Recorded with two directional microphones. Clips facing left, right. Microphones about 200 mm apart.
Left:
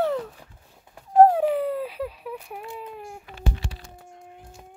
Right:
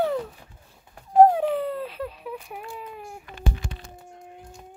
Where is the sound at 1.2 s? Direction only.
5° left (ahead or behind).